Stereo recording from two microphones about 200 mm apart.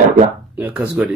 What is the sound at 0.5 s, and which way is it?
Speech, 10° right (ahead or behind).